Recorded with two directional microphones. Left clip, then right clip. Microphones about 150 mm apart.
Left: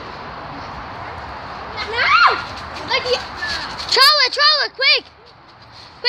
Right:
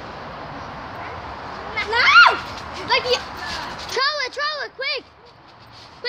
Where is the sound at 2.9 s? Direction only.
10° right (ahead or behind).